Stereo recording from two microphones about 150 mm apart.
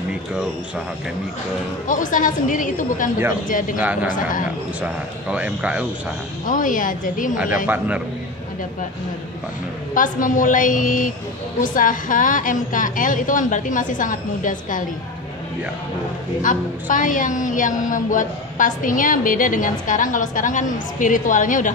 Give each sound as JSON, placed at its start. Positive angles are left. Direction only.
{"t": 1.9, "sound": "a woman's voice", "side_deg": 60}
{"t": 3.7, "sound": "speech", "side_deg": -10}
{"t": 4.1, "sound": "a woman's voice", "side_deg": 65}
{"t": 5.3, "sound": "speech", "side_deg": -10}
{"t": 6.4, "sound": "a woman's voice", "side_deg": 60}
{"t": 7.6, "sound": "speech", "side_deg": -10}
{"t": 9.9, "sound": "a woman's voice", "side_deg": 60}
{"t": 16.4, "sound": "a woman's voice", "side_deg": 60}